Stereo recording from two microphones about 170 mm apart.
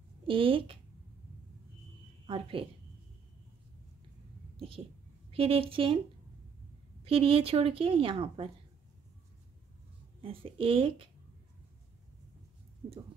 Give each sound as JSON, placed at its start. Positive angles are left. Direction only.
{"t": 0.3, "sound": "a woman's voice", "side_deg": -30}
{"t": 2.2, "sound": "a woman's voice", "side_deg": -30}
{"t": 5.3, "sound": "a woman's voice", "side_deg": -30}
{"t": 7.1, "sound": "a woman's voice", "side_deg": -30}
{"t": 10.2, "sound": "a woman's voice", "side_deg": -30}